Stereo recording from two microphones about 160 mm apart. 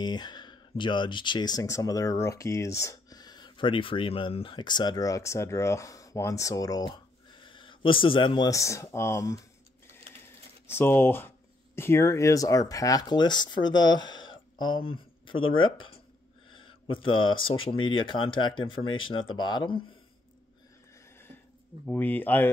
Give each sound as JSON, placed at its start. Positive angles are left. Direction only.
{"t": 0.0, "sound": "speech", "side_deg": 25}
{"t": 10.7, "sound": "speech", "side_deg": 15}
{"t": 21.8, "sound": "speech", "side_deg": 10}